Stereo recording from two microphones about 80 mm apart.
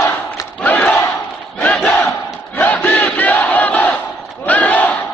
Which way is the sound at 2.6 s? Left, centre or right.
Centre.